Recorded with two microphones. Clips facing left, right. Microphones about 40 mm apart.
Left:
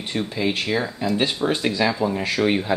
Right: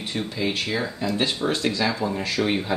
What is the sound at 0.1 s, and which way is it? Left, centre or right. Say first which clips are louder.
Speech: left 3 dB; centre.